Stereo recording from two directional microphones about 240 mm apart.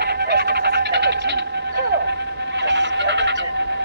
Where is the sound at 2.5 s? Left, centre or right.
Right.